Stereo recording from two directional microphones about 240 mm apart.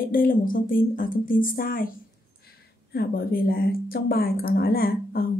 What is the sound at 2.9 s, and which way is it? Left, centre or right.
Speech, left.